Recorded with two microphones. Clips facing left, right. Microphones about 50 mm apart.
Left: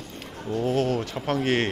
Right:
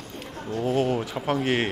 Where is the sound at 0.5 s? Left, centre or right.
Centre.